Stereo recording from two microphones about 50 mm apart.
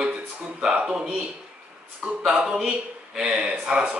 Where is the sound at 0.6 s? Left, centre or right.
Centre.